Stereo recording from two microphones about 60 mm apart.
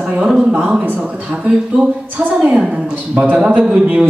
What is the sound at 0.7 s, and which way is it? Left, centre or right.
Speech, right.